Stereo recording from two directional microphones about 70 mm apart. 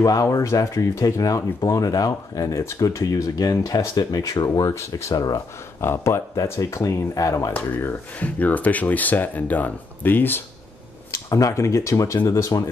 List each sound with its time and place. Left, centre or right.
0.0 s speech: left
4.6 s speech: left
5.1 s speech: left
5.8 s speech: left
7.5 s speech: left
11.2 s speech: left